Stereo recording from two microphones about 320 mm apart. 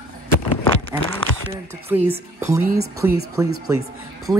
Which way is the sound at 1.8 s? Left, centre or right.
Centre.